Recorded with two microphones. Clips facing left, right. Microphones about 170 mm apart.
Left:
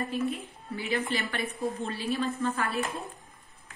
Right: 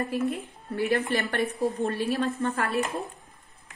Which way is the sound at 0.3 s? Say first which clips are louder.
Right 3 dB; 65° right (ahead or behind).